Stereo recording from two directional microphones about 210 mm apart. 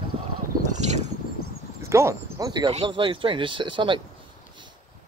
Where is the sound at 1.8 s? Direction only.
15° right (ahead or behind).